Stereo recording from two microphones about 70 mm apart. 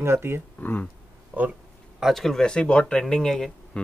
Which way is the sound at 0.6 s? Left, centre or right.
Left.